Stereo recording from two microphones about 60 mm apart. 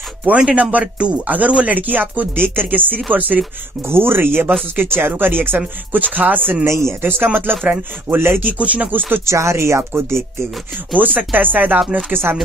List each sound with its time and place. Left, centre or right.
0.5 s speech: right
3.8 s speech: right
6.6 s speech: right
7.0 s speech: right
8.5 s speech: right
9.2 s speech: right
11.0 s speech: right